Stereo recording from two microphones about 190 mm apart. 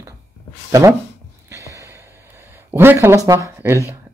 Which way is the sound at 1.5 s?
15° right (ahead or behind).